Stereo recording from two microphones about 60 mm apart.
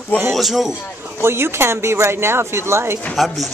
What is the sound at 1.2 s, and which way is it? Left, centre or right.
Speech, right.